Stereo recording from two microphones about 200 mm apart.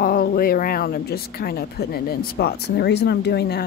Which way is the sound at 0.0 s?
50° left (ahead or behind).